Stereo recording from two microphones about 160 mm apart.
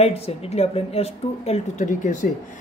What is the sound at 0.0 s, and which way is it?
A woman's voice, 40° left (ahead or behind).